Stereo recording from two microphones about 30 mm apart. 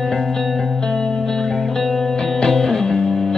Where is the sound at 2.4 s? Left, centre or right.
Centre.